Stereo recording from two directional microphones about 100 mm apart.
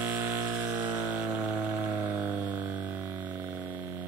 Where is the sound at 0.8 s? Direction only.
15° right (ahead or behind).